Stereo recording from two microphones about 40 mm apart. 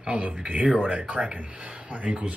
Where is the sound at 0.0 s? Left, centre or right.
Right.